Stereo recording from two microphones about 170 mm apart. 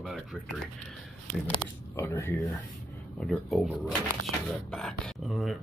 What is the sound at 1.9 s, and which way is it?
Speech, 15° left (ahead or behind).